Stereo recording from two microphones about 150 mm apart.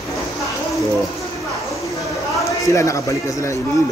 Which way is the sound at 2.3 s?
20° left (ahead or behind).